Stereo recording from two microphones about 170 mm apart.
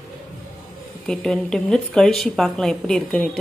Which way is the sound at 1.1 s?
5° left (ahead or behind).